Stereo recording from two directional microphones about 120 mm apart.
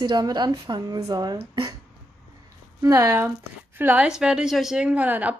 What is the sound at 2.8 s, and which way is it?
A woman's voice, 25° right (ahead or behind).